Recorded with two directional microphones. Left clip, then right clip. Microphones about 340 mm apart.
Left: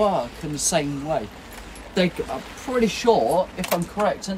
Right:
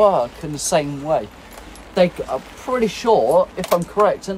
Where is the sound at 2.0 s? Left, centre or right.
Centre.